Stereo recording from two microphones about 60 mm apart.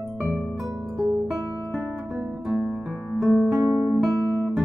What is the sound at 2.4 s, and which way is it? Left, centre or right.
Music, centre.